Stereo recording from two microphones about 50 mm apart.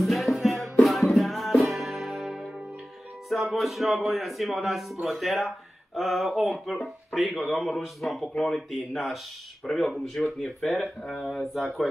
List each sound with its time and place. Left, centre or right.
0.0 s music: centre
3.3 s a man's voice: centre